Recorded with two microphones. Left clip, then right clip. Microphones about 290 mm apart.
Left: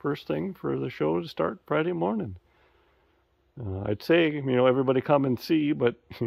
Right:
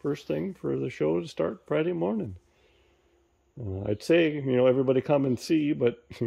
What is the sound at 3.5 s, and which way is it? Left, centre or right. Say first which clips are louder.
Speech: even; centre.